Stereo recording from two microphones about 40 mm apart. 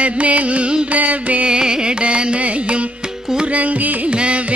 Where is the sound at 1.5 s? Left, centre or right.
Right.